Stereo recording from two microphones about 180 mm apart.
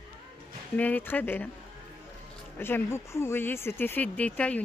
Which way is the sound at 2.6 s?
15° left (ahead or behind).